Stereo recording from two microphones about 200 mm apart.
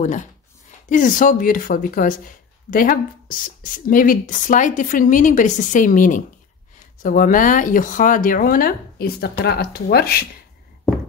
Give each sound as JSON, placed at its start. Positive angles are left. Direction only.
{"t": 0.8, "sound": "speech", "side_deg": 40}